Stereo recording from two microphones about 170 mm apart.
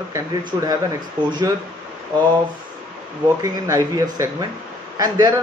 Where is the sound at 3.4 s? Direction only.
20° right (ahead or behind).